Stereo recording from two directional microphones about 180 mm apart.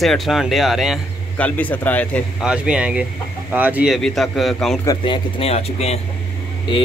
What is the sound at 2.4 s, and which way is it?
Speech, 5° right (ahead or behind).